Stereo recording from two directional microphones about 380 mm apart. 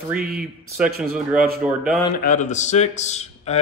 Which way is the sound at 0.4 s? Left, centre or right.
Centre.